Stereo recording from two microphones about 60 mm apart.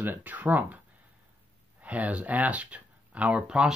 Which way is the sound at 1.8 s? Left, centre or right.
Right.